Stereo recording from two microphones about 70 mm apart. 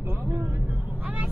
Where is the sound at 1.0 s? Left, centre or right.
Centre.